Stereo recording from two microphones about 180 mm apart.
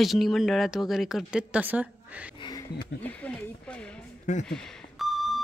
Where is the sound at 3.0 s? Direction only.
10° left (ahead or behind).